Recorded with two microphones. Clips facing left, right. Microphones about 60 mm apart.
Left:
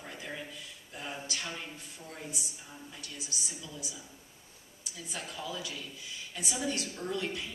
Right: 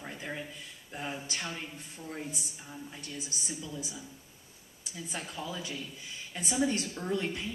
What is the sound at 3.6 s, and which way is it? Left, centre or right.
Speech, right.